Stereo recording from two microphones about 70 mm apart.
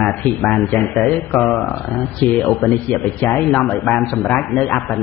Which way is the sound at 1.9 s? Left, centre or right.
Centre.